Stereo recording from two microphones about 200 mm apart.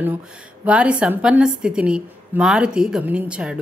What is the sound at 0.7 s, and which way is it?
A woman's voice, 5° right (ahead or behind).